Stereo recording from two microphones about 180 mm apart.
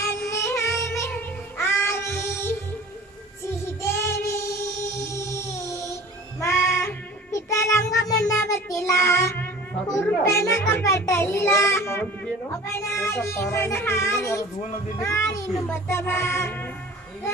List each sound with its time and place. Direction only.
0.3 s music: 15° left (ahead or behind)
3.8 s child singing: 15° left (ahead or behind)
15.0 s music: 15° left (ahead or behind)